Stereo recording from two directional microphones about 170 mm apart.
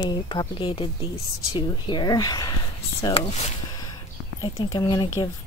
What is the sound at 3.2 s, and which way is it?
Speech, 40° left (ahead or behind).